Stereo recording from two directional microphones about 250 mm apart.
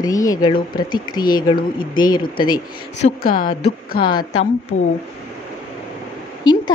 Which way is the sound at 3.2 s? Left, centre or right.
Left.